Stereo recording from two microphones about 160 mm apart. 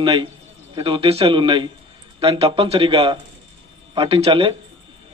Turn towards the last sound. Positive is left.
turn(degrees=-35)  # may be behind; listen again after turning